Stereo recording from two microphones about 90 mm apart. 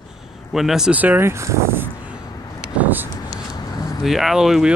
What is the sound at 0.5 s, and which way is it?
Speech, 5° right (ahead or behind).